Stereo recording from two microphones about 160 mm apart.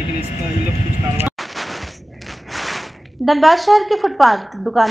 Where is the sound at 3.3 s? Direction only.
Centre (ahead or behind).